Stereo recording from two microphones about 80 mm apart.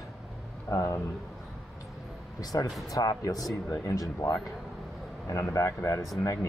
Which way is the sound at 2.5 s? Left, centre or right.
Left.